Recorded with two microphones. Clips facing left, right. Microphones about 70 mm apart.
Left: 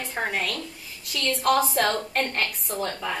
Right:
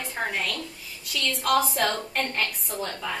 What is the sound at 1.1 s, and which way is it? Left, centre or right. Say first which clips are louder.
A woman's voice: left 2 dB; centre.